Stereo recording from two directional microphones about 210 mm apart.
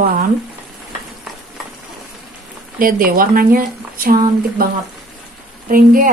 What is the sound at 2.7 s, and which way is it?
A woman's voice, 40° right (ahead or behind).